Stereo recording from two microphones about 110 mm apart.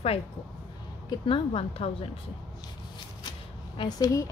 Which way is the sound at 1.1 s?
50° left (ahead or behind).